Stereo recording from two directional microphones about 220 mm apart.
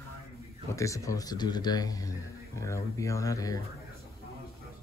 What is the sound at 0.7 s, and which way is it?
Speech, 15° left (ahead or behind).